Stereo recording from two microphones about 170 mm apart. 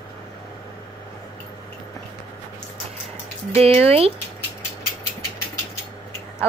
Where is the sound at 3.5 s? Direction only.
35° right (ahead or behind).